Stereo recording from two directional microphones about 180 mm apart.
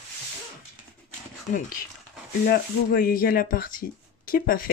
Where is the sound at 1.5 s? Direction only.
50° left (ahead or behind).